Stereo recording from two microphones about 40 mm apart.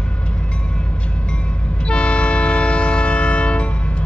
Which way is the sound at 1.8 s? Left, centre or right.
Left.